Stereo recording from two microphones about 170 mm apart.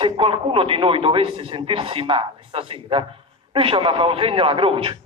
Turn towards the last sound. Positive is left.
turn(degrees=-30)  # may be behind; listen again after turning